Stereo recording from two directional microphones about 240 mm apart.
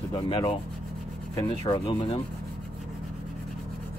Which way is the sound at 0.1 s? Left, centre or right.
Centre.